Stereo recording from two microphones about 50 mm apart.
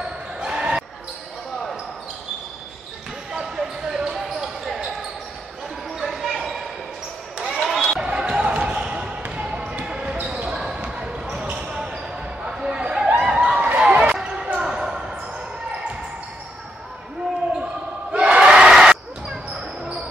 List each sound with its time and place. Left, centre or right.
0.4 s basketball bounce: centre
3.3 s basketball bounce: centre
8.0 s basketball bounce: centre
12.4 s chatter: centre
13.2 s a sound: centre
14.4 s basketball bounce: centre
18.1 s crowd: centre